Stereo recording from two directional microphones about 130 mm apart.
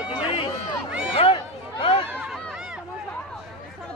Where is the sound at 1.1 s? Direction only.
45° left (ahead or behind).